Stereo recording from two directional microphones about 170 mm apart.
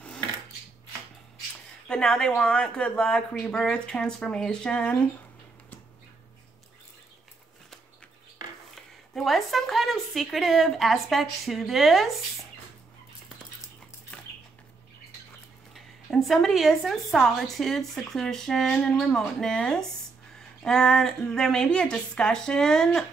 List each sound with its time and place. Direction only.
1.9 s a woman's voice: 5° left (ahead or behind)
8.7 s a woman's voice: centre (ahead or behind)
15.7 s a woman's voice: centre (ahead or behind)